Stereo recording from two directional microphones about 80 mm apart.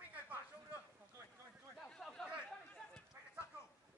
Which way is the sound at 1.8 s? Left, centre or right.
Centre.